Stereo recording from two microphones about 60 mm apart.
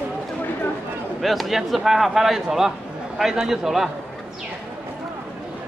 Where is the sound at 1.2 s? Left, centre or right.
Centre.